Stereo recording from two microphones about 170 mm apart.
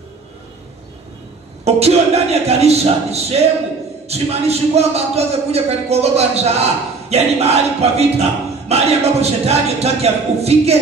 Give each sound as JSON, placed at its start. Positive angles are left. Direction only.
{"t": 1.6, "sound": "speech", "side_deg": -40}